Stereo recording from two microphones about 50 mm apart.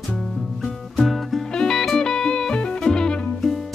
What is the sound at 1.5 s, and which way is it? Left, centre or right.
Music, centre.